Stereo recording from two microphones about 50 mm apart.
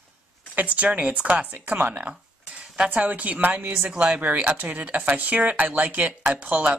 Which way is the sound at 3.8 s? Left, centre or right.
Right.